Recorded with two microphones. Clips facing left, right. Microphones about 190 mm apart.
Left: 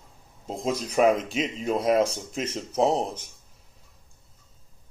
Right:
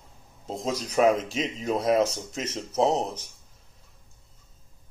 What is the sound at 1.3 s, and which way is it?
Speech, 5° left (ahead or behind).